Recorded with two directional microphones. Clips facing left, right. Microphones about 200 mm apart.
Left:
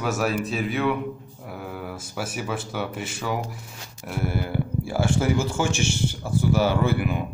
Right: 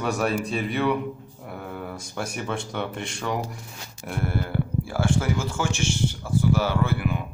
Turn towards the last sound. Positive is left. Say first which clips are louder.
# left 2 dB
turn(degrees=15)  # may be behind; listen again after turning